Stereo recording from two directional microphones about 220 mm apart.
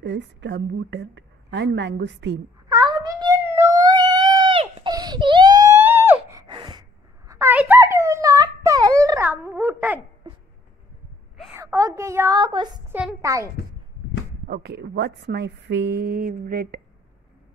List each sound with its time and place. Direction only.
0.0 s a woman's voice: 55° right (ahead or behind)
2.7 s cat: 15° right (ahead or behind)
11.5 s a child's voice: 15° right (ahead or behind)
14.5 s a woman's voice: 45° right (ahead or behind)